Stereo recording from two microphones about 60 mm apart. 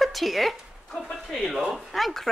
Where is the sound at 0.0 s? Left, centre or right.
Centre.